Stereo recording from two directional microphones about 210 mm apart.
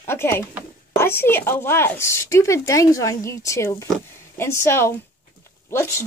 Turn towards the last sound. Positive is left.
turn(degrees=10)  # may be behind; listen again after turning